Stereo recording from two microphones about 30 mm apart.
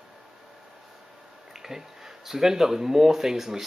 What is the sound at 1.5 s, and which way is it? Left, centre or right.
Speech, centre.